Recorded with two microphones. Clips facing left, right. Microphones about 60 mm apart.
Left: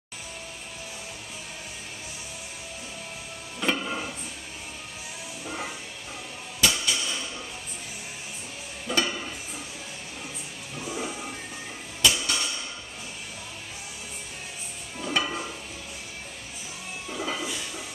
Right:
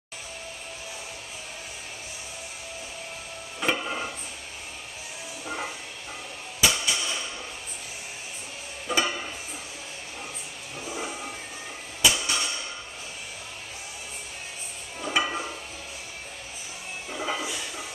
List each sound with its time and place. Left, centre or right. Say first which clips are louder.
3.6 s music: even; centre
5.4 s a sound: right 2 dB; centre
6.6 s music: right 1 dB; centre
8.8 s stir: right 1 dB; centre
12.0 s hammer: even; centre
15.0 s dishes: right 1 dB; centre
17.1 s a sound: right 1 dB; centre